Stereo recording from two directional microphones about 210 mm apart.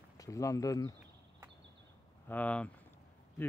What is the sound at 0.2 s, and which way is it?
Speech, 15° left (ahead or behind).